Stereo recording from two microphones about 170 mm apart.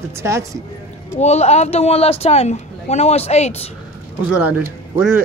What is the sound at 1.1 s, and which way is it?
Speech, 40° left (ahead or behind).